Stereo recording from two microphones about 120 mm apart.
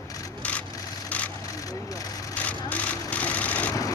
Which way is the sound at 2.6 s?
10° left (ahead or behind).